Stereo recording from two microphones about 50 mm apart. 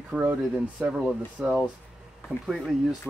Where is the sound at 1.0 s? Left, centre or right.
Centre.